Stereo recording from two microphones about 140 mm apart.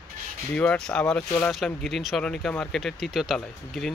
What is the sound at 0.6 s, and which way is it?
Speech, 5° left (ahead or behind).